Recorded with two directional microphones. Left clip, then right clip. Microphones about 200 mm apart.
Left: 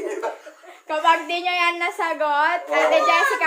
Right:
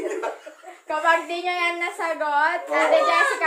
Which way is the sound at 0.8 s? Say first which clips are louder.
Left 2 dB; 50° left (ahead or behind).